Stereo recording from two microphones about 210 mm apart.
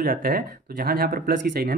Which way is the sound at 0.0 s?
45° right (ahead or behind).